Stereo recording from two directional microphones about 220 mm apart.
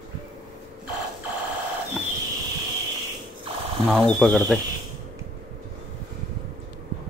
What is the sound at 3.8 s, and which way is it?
Speech, 5° left (ahead or behind).